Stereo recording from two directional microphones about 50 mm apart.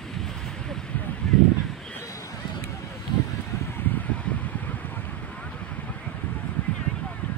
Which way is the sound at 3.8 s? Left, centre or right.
Left.